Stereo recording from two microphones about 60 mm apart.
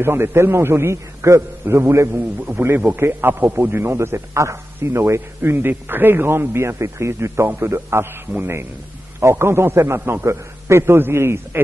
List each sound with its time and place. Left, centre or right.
0.0 s a man's voice: right
2.1 s a man's voice: right
7.4 s a man's voice: right
9.2 s a man's voice: right
10.2 s a man's voice: right